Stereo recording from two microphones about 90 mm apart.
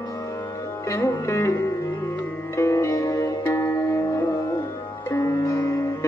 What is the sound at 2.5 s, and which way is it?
Music, 30° left (ahead or behind).